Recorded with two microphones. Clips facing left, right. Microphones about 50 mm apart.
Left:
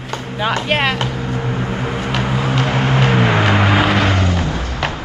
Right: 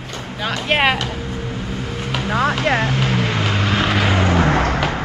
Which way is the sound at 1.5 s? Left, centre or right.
Left.